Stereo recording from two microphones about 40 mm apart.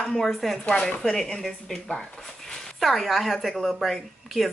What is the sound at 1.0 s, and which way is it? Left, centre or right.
Speech, centre.